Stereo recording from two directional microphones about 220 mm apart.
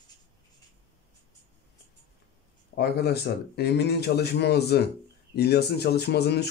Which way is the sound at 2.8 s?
45° left (ahead or behind).